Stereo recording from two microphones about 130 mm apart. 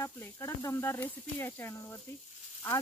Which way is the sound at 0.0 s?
20° left (ahead or behind).